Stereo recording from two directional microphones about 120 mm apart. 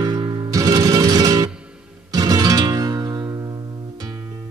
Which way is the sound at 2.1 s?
30° right (ahead or behind).